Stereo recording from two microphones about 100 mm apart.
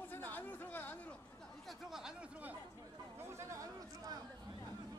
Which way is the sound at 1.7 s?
5° right (ahead or behind).